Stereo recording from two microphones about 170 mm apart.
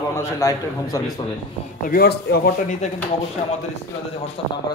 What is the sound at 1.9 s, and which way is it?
Speech, 70° left (ahead or behind).